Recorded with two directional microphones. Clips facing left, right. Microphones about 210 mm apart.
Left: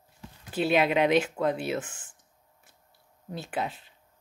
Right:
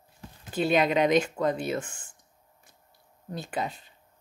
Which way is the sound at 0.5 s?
5° left (ahead or behind).